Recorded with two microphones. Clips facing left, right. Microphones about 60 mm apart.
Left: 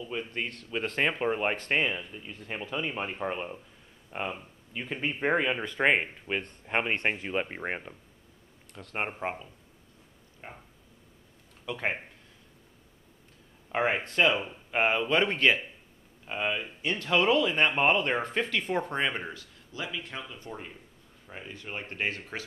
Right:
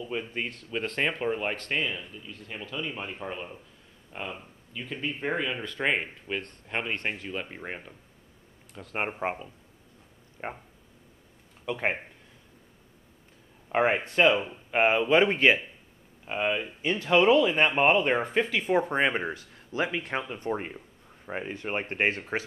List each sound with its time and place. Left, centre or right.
0.0 s speech: centre
1.2 s speech: centre
8.7 s speech: centre
10.4 s speech: right
11.6 s speech: centre
13.7 s speech: centre; by 19.4 s right
19.7 s speech: right